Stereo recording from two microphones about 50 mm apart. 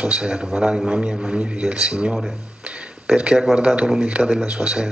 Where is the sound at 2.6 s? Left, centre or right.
Right.